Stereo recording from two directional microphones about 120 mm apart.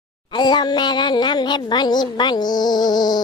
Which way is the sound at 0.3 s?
40° left (ahead or behind).